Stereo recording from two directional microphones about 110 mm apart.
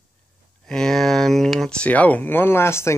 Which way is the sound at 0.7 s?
5° left (ahead or behind).